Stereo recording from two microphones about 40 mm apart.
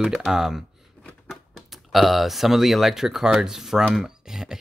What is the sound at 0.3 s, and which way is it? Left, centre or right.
Speech, centre.